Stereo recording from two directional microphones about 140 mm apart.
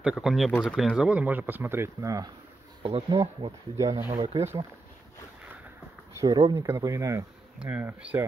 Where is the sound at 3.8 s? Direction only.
20° right (ahead or behind).